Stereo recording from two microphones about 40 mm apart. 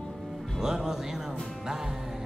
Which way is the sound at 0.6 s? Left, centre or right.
Centre.